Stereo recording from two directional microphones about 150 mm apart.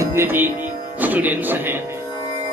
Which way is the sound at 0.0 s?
15° right (ahead or behind).